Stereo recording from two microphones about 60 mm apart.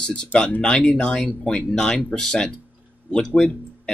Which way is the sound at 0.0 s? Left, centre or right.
Centre.